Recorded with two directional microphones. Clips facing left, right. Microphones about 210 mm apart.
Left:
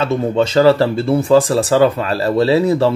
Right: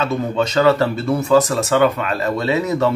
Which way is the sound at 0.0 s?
30° left (ahead or behind).